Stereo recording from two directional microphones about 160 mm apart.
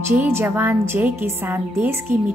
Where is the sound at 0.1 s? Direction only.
15° right (ahead or behind).